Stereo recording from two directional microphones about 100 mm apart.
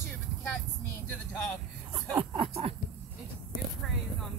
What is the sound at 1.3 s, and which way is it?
Speech, 20° left (ahead or behind).